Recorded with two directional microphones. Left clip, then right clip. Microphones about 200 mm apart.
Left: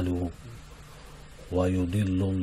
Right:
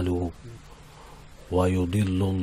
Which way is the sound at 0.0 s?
15° right (ahead or behind).